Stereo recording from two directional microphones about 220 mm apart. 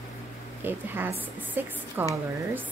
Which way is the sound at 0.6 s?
10° right (ahead or behind).